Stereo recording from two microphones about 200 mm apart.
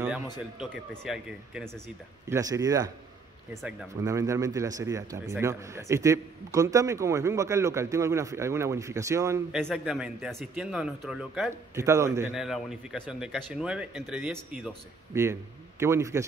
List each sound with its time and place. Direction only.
0.6 s speech: 5° right (ahead or behind)
2.2 s a man's voice: 15° right (ahead or behind)
4.0 s a man's voice: 15° right (ahead or behind)
9.5 s speech: centre (ahead or behind)
11.7 s a man's voice: 15° right (ahead or behind)
12.4 s speech: centre (ahead or behind)
15.8 s a man's voice: 15° right (ahead or behind)